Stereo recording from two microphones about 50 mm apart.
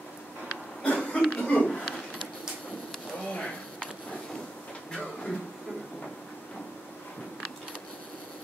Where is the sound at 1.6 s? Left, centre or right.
Centre.